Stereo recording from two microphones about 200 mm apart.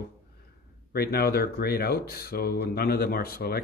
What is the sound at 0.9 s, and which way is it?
Speech, 50° left (ahead or behind).